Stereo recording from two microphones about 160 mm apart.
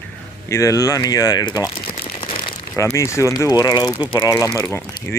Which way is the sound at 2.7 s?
20° left (ahead or behind).